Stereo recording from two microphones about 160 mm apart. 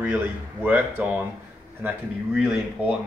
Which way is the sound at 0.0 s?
10° right (ahead or behind).